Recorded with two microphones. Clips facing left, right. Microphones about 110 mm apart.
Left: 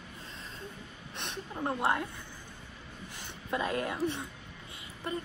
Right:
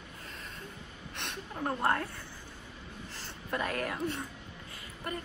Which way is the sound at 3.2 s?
20° left (ahead or behind).